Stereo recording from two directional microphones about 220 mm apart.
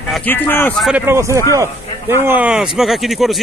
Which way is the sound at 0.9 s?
10° right (ahead or behind).